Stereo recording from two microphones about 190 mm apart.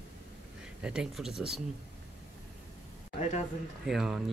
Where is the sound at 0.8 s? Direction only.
5° right (ahead or behind).